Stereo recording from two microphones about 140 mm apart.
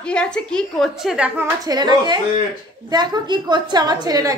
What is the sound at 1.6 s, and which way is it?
A woman's voice, 30° right (ahead or behind).